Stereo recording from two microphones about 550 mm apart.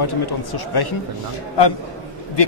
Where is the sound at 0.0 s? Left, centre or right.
Left.